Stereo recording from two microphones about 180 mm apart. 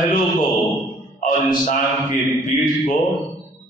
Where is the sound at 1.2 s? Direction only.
45° left (ahead or behind).